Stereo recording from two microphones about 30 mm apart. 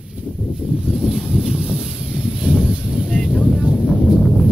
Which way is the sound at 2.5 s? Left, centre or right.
Right.